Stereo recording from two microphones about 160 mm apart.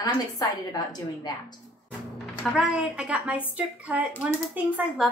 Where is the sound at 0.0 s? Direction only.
25° left (ahead or behind).